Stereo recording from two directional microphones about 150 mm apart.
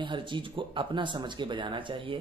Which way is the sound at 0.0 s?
35° right (ahead or behind).